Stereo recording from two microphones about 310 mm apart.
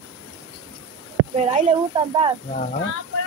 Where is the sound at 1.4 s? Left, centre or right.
Right.